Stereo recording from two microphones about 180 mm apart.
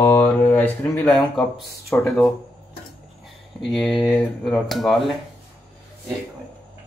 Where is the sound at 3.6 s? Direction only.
Centre (ahead or behind).